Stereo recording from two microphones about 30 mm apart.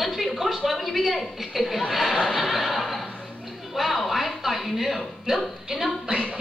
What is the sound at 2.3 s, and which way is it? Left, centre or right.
Music, centre.